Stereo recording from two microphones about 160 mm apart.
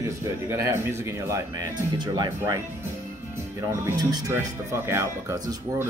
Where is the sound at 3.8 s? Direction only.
25° right (ahead or behind).